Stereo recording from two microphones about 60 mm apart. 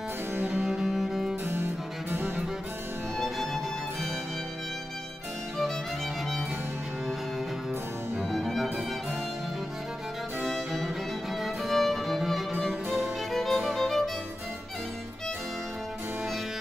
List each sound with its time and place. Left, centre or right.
0.3 s music: right
0.7 s music: centre
1.4 s music: right
3.2 s music: centre
8.2 s music: centre
10.4 s music: centre